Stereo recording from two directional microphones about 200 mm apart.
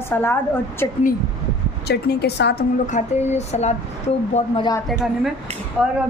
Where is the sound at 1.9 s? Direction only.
55° left (ahead or behind).